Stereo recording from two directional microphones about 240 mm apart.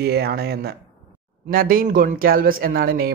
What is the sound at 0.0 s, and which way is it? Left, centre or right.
Speech, right.